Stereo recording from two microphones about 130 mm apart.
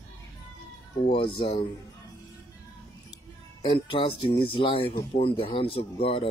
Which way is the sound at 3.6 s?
40° left (ahead or behind).